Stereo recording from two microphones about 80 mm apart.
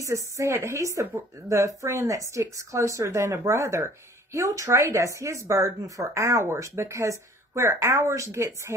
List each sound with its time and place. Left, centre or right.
0.0 s speech: right